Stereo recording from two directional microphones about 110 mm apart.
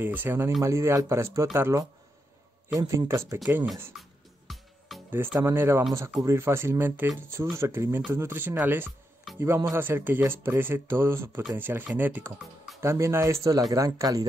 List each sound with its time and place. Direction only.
0.0 s speech: 15° right (ahead or behind)
3.9 s music: 5° right (ahead or behind)
5.4 s speech: 20° right (ahead or behind)
12.8 s speech: 30° right (ahead or behind)